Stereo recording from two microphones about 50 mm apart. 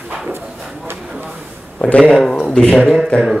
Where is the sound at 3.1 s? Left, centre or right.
Centre.